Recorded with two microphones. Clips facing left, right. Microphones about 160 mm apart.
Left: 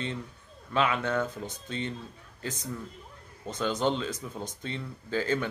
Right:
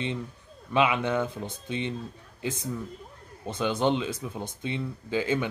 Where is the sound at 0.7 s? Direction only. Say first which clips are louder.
Right 3 dB; 15° right (ahead or behind).